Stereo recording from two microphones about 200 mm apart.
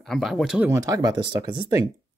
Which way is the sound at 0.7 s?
15° right (ahead or behind).